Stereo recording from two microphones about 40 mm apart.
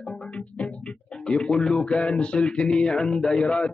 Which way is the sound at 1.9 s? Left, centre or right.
Left.